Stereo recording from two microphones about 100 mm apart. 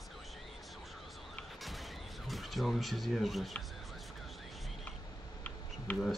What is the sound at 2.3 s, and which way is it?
Speech, centre (ahead or behind).